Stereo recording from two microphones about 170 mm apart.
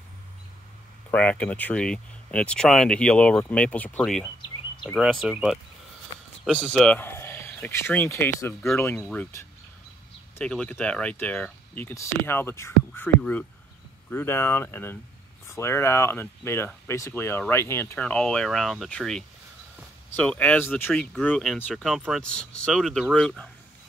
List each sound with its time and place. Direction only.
1.1 s speech: 5° left (ahead or behind)
4.2 s a sound: 25° left (ahead or behind)
4.8 s speech: 5° right (ahead or behind)